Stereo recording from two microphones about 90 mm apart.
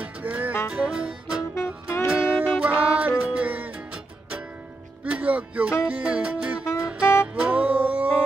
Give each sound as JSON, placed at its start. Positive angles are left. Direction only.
{"t": 0.0, "sound": "music", "side_deg": -15}
{"t": 1.5, "sound": "music", "side_deg": 30}
{"t": 2.0, "sound": "music", "side_deg": -15}
{"t": 7.0, "sound": "music", "side_deg": 30}
{"t": 7.3, "sound": "music", "side_deg": -15}